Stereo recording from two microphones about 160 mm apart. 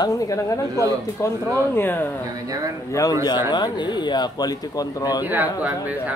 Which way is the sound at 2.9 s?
20° left (ahead or behind).